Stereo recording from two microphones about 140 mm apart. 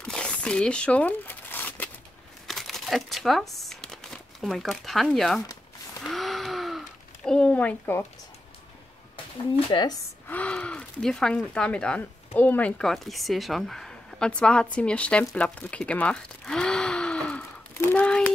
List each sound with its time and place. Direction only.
0.0 s crumpling: 5° left (ahead or behind)
2.4 s crumpling: centre (ahead or behind)
6.0 s gasp: centre (ahead or behind)
7.2 s speech: 5° left (ahead or behind)
9.7 s speech: 35° left (ahead or behind)
10.2 s gasp: 10° left (ahead or behind)
11.3 s speech: 10° left (ahead or behind)
15.2 s gasp: 5° left (ahead or behind)
17.8 s a sound: 10° left (ahead or behind)